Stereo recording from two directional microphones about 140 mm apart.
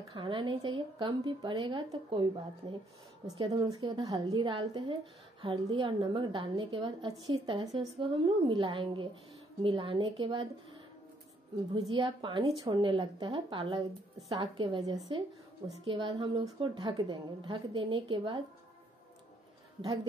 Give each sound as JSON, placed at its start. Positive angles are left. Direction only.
{"t": 0.1, "sound": "a woman's voice", "side_deg": -35}
{"t": 7.2, "sound": "a woman's voice", "side_deg": -45}
{"t": 8.0, "sound": "a woman's voice", "side_deg": -35}
{"t": 11.7, "sound": "a woman's voice", "side_deg": -35}